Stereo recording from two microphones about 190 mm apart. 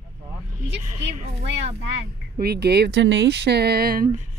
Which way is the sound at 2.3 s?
55° right (ahead or behind).